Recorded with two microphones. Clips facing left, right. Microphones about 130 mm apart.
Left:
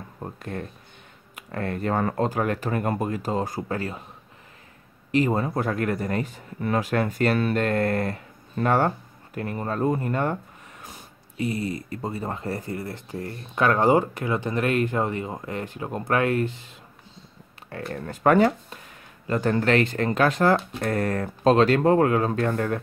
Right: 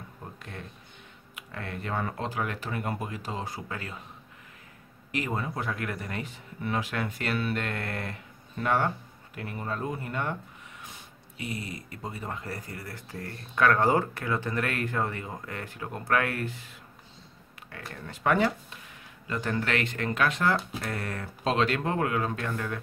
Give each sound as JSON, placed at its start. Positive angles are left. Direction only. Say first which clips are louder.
{"t": 0.2, "sound": "speech", "louder": "left 10 dB", "side_deg": 45}
{"t": 5.1, "sound": "speech", "louder": "left 9 dB", "side_deg": 35}
{"t": 17.6, "sound": "speech", "louder": "left 9 dB", "side_deg": 40}